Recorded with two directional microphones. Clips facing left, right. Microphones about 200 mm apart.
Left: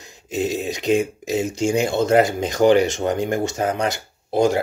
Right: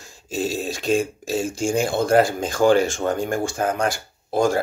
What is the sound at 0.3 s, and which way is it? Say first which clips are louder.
Speech: left 2 dB; 20° left (ahead or behind).